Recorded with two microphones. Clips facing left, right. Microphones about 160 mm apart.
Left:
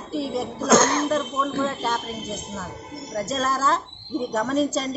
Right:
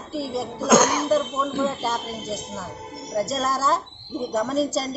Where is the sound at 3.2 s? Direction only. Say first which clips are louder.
Right 1 dB; 5° right (ahead or behind).